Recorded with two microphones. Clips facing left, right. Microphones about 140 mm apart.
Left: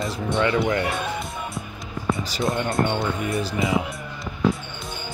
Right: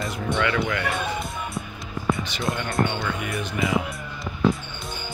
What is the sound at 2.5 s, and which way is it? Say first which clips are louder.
Speech: left 1 dB; 25° left (ahead or behind).